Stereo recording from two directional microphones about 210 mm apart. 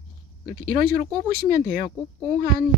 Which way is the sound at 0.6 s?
45° right (ahead or behind).